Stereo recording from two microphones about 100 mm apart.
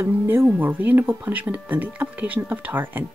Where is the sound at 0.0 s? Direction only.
25° right (ahead or behind).